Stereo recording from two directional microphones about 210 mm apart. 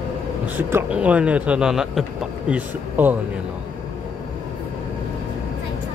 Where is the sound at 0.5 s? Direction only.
10° right (ahead or behind).